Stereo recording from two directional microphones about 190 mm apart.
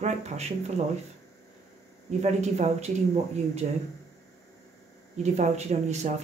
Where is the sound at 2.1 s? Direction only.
35° right (ahead or behind).